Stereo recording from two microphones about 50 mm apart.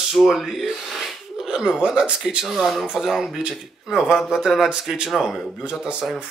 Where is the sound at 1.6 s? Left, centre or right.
Centre.